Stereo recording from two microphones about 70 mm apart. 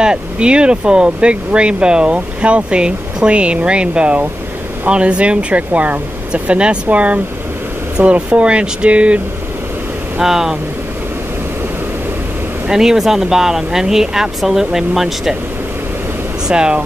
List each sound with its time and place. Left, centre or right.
0.0 s speech: centre
10.1 s speech: centre
12.6 s speech: centre
16.4 s speech: centre